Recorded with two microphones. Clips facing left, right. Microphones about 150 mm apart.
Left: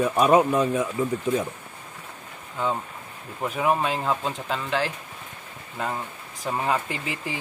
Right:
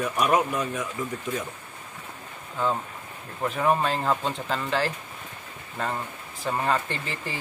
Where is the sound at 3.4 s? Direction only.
5° left (ahead or behind).